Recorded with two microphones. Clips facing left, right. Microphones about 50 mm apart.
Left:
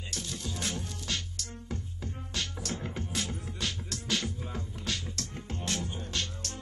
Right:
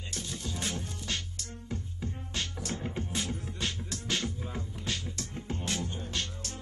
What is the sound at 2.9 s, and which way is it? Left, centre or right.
Music, right.